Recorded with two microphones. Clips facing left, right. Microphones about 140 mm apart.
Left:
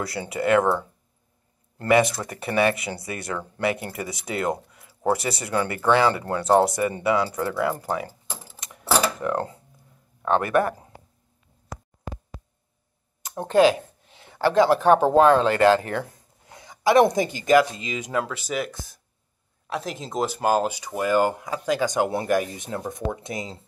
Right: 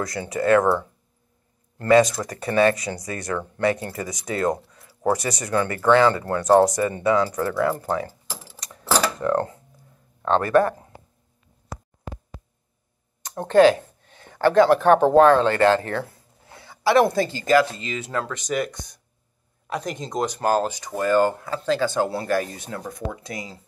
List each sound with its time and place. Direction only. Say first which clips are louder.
0.0 s speech: right 2 dB; 25° left (ahead or behind)
1.8 s speech: right 3 dB; 20° left (ahead or behind)
10.2 s speech: right 3 dB; 15° left (ahead or behind)
13.2 s speech: right 3 dB; 10° left (ahead or behind)